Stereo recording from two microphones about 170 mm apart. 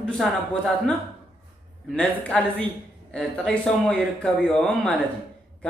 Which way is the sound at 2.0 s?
5° left (ahead or behind).